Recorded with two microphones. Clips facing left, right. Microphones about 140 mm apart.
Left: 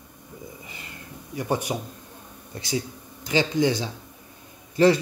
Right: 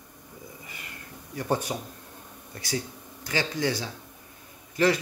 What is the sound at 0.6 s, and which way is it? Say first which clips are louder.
Vehicle: left 2 dB; 25° left (ahead or behind).